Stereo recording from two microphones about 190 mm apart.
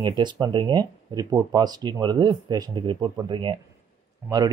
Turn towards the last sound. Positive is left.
turn(degrees=-20)  # may be behind; listen again after turning